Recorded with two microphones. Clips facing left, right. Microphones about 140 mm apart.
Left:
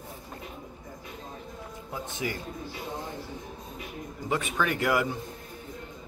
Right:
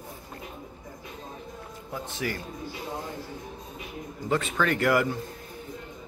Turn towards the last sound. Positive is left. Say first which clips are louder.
# right 3 dB
turn(degrees=15)  # may be behind; listen again after turning